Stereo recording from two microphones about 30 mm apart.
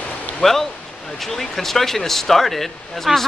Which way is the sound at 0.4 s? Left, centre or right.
Centre.